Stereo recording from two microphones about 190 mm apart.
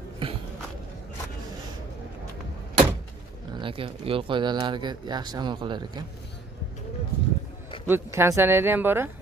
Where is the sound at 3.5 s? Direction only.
25° right (ahead or behind).